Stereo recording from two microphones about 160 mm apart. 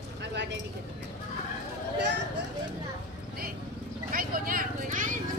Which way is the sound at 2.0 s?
90° right.